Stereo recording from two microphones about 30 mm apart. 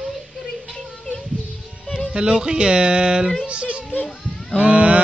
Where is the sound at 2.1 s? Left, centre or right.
Right.